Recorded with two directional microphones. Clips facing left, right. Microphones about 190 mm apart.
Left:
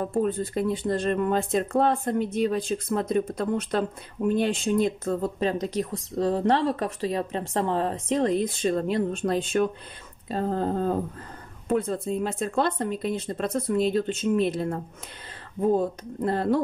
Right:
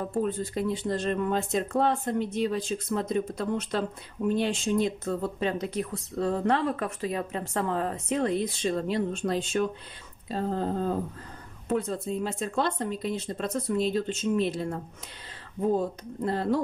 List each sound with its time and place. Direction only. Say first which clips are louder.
0.1 s speech: left 3 dB; 55° left (ahead or behind)
16.2 s speech: left 3 dB; 55° left (ahead or behind)